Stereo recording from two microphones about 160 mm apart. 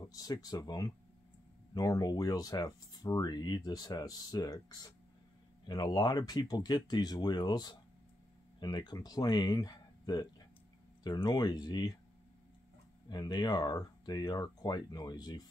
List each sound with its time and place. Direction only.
0.0 s speech: 25° left (ahead or behind)
13.1 s speech: 25° left (ahead or behind)